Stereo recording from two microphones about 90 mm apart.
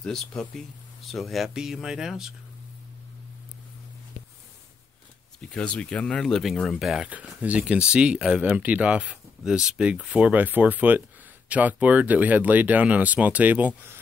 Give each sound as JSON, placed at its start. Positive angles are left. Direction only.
{"t": 0.0, "sound": "speech", "side_deg": 5}
{"t": 5.4, "sound": "speech", "side_deg": 10}
{"t": 7.4, "sound": "speech", "side_deg": -15}